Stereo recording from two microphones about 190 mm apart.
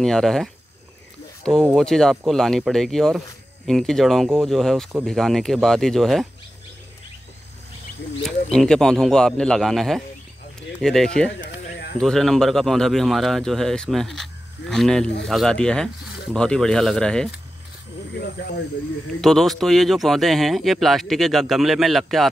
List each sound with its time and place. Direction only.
0.0 s speech: centre (ahead or behind)
8.2 s speech: centre (ahead or behind)
18.1 s speech: 55° left (ahead or behind)
19.2 s speech: centre (ahead or behind)